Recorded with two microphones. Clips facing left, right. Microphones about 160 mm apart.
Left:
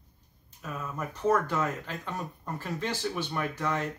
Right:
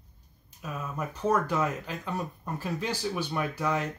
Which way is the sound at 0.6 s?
10° right (ahead or behind).